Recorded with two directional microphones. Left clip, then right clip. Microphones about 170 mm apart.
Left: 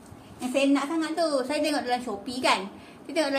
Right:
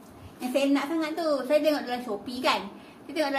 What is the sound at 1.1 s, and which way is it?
A woman's voice, 35° left (ahead or behind).